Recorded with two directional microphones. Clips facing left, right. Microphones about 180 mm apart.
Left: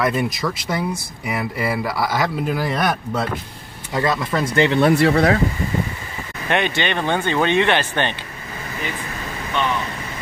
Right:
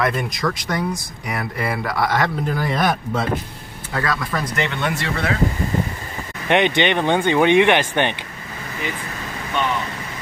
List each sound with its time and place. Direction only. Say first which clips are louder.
0.0 s speech: left 1 dB; 5° left (ahead or behind)
3.9 s speech: left 3 dB; 25° left (ahead or behind)
6.5 s speech: right 4 dB; 20° right (ahead or behind)